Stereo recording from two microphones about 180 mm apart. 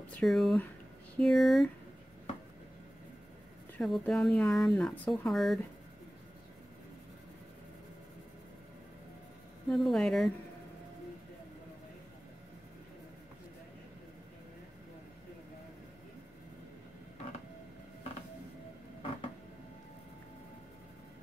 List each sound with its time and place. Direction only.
0.0 s speech: centre (ahead or behind)
3.7 s speech: 5° left (ahead or behind)
9.7 s speech: centre (ahead or behind)